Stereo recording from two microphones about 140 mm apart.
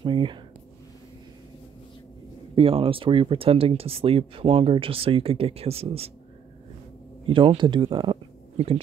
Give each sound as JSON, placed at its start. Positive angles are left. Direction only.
{"t": 0.0, "sound": "speech", "side_deg": -35}
{"t": 2.5, "sound": "speech", "side_deg": -40}
{"t": 7.2, "sound": "speech", "side_deg": -35}